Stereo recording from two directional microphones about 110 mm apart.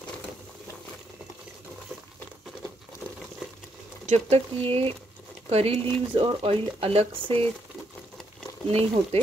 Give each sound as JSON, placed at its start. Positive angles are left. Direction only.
{"t": 4.0, "sound": "speech", "side_deg": -80}
{"t": 6.1, "sound": "speech", "side_deg": -55}
{"t": 8.6, "sound": "speech", "side_deg": -65}